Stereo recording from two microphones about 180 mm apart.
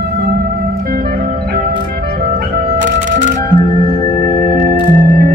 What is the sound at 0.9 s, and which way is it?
Music, 55° right (ahead or behind).